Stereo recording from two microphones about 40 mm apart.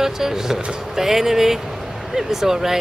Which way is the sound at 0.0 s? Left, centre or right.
Centre.